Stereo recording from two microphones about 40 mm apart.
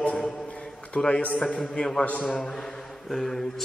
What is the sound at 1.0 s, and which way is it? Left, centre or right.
Speech, left.